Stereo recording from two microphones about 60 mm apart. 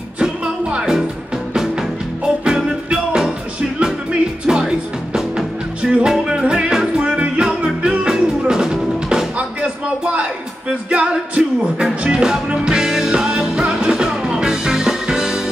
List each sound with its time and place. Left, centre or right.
0.2 s music: centre